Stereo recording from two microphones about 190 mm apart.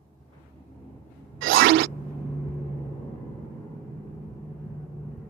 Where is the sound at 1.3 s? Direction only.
90° right.